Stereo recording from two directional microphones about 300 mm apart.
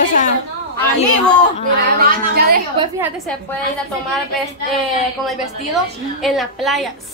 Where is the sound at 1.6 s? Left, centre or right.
Right.